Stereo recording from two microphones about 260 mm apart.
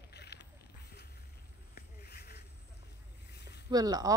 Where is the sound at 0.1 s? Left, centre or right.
Left.